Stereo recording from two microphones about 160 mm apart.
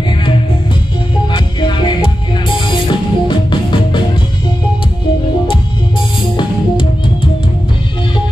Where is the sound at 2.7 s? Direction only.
30° left (ahead or behind).